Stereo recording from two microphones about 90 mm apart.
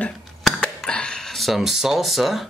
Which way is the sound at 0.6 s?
10° left (ahead or behind).